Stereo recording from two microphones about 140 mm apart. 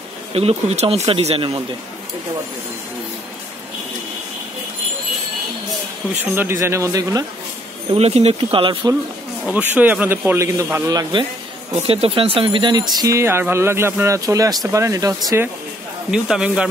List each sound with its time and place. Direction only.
0.3 s speech: 45° right (ahead or behind)
6.2 s speech: 15° right (ahead or behind)
7.9 s speech: 50° right (ahead or behind)
9.5 s a man's voice: 10° right (ahead or behind); by 11.2 s 30° right (ahead or behind)
11.7 s speech: 45° right (ahead or behind)
13.0 s a man's voice: 20° right (ahead or behind)
16.1 s a man's voice: 5° right (ahead or behind)